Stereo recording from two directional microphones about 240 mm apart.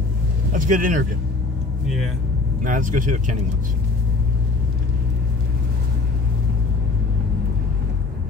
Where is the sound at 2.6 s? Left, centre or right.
Right.